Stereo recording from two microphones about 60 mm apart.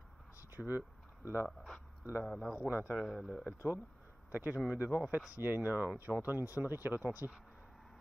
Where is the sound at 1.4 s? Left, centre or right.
Centre.